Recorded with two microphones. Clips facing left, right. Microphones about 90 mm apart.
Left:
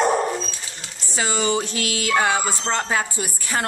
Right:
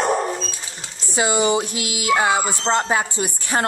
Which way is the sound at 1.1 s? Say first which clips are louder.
Right 4 dB; 15° right (ahead or behind).